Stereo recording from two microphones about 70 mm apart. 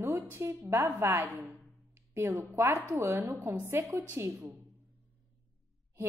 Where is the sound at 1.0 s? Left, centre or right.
Right.